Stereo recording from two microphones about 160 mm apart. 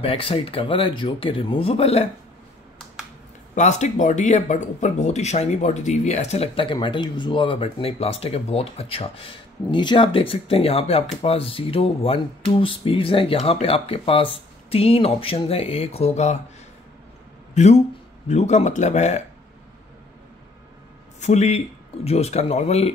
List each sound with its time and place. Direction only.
0.0 s speech: 35° left (ahead or behind)
3.5 s speech: 45° left (ahead or behind)
17.6 s speech: 45° left (ahead or behind)
21.2 s speech: 45° left (ahead or behind)